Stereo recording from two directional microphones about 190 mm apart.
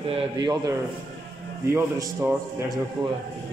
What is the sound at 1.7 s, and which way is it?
Speech, 15° right (ahead or behind).